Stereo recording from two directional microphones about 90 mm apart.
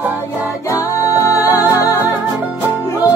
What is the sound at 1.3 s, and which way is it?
Music, 35° left (ahead or behind).